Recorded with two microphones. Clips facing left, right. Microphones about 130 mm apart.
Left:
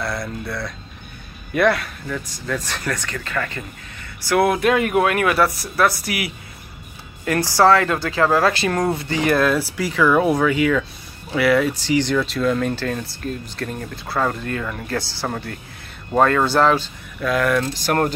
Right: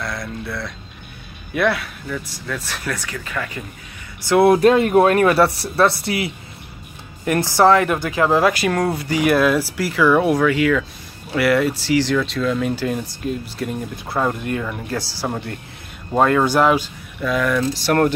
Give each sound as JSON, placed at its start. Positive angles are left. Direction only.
{"t": 0.0, "sound": "speech", "side_deg": 0}
{"t": 4.3, "sound": "speech", "side_deg": -25}
{"t": 17.3, "sound": "speech", "side_deg": 0}